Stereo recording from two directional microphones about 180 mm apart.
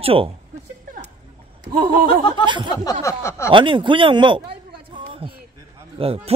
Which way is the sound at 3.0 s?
15° left (ahead or behind).